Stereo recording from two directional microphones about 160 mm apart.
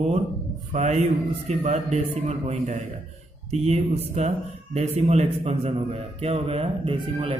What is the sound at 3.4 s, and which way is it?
A man's voice, 40° right (ahead or behind).